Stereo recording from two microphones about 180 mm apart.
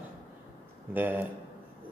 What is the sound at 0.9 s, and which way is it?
Speech, 10° right (ahead or behind).